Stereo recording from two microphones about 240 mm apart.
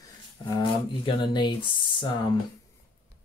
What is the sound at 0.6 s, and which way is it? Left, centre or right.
Speech, centre.